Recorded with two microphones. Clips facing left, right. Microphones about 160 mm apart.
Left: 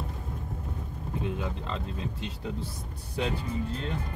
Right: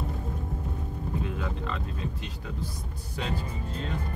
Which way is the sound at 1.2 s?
25° left (ahead or behind).